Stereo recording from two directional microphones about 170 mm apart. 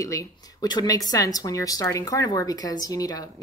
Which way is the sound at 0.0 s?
20° left (ahead or behind).